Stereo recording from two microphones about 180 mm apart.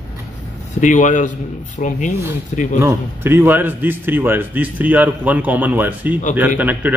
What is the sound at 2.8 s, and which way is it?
Speech, 15° right (ahead or behind).